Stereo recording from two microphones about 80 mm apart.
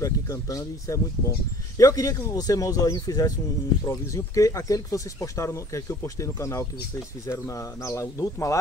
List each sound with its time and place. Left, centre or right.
0.0 s speech: left